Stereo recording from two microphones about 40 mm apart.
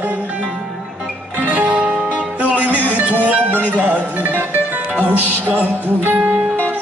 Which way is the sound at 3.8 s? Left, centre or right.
Right.